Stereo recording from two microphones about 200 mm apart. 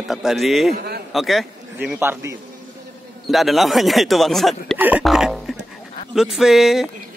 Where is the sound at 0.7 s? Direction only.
50° right (ahead or behind).